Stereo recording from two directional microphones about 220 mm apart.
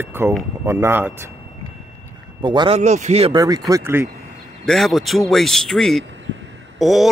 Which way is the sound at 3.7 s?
10° right (ahead or behind).